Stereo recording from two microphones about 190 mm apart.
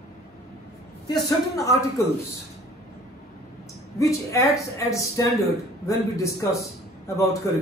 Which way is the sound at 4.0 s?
15° left (ahead or behind).